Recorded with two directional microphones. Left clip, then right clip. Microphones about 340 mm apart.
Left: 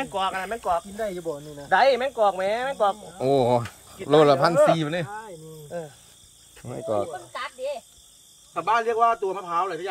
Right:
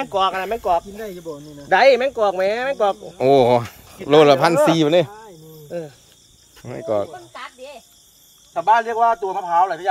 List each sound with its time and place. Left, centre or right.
0.0 s speech: right
1.0 s snake: centre
1.7 s speech: right
3.2 s speech: centre
5.7 s speech: right
6.6 s speech: centre
8.5 s speech: centre